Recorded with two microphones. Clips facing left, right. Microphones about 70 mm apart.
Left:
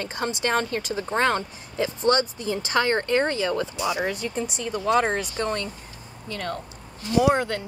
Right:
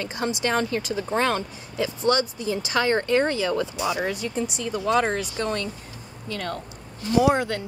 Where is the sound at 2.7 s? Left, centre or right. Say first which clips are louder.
Right 1 dB; centre.